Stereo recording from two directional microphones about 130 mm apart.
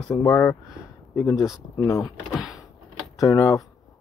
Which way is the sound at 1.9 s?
25° left (ahead or behind).